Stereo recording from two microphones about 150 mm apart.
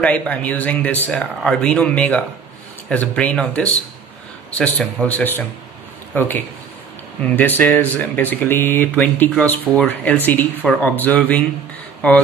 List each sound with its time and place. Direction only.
0.0 s speech: 10° left (ahead or behind)